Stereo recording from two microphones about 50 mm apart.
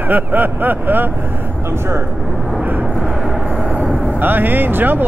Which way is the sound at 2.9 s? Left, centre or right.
Centre.